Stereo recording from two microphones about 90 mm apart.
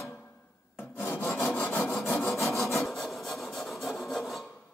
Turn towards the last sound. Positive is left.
turn(degrees=0)  # may be behind; listen again after turning